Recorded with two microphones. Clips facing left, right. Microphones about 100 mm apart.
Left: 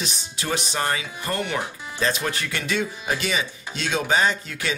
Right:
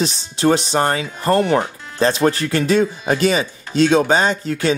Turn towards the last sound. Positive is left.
turn(degrees=-35)  # may be behind; listen again after turning